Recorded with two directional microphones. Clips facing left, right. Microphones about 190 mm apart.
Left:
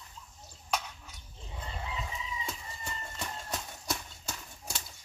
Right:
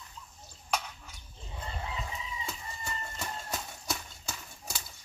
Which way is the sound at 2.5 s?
Centre (ahead or behind).